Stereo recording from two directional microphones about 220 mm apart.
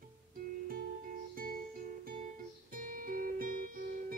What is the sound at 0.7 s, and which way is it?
Guitar, 40° right (ahead or behind).